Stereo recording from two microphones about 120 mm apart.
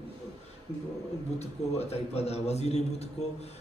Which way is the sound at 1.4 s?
60° left (ahead or behind).